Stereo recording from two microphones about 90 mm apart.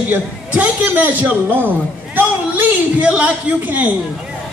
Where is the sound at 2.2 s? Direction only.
20° right (ahead or behind).